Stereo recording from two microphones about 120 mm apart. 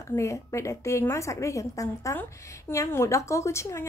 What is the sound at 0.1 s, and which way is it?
Speech, 25° left (ahead or behind).